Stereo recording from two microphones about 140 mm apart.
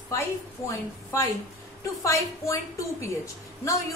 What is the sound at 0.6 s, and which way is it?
A woman's voice, 20° left (ahead or behind).